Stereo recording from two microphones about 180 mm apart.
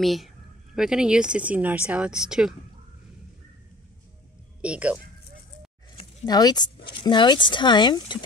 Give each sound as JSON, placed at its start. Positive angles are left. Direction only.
{"t": 0.0, "sound": "speech", "side_deg": 0}
{"t": 4.6, "sound": "speech", "side_deg": -5}
{"t": 5.9, "sound": "speech", "side_deg": 20}